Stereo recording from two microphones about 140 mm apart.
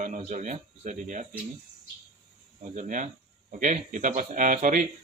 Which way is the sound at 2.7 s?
65° right (ahead or behind).